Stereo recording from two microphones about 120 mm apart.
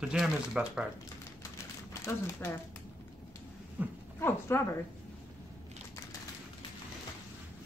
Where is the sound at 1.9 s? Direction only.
20° left (ahead or behind).